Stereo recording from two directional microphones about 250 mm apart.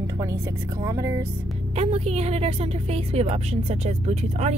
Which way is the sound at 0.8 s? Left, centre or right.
Centre.